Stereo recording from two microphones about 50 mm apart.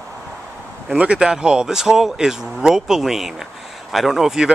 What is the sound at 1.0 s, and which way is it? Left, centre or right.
Speech, centre.